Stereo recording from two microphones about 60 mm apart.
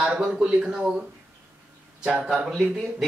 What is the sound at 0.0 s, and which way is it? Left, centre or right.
A woman's voice, centre.